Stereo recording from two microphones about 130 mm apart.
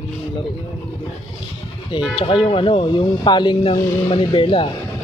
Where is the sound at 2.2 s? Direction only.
45° left (ahead or behind).